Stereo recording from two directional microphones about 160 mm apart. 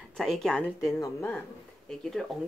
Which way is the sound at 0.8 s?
20° left (ahead or behind).